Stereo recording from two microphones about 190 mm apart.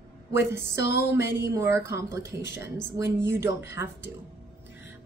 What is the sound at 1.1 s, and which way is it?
A woman's voice, 15° right (ahead or behind).